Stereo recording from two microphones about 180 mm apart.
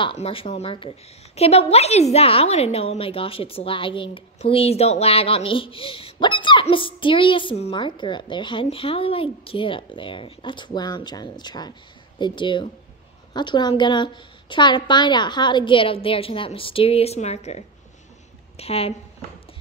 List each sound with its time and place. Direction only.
0.0 s a woman's voice: 30° left (ahead or behind)